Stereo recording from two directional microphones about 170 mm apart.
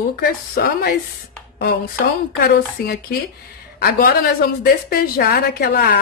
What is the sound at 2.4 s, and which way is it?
A woman's voice, 65° left (ahead or behind).